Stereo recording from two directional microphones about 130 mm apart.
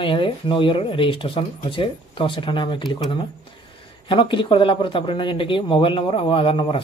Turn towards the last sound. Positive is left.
turn(degrees=40)  # may be behind; listen again after turning